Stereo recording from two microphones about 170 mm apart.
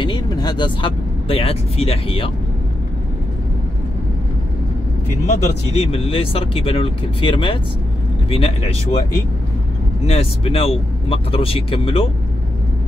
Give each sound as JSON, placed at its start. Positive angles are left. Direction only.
{"t": 0.0, "sound": "speech", "side_deg": 25}
{"t": 5.3, "sound": "speech", "side_deg": 35}
{"t": 10.0, "sound": "speech", "side_deg": 35}